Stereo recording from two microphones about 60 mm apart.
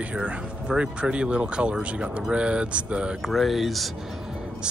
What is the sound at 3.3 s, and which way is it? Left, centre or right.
Speech, centre.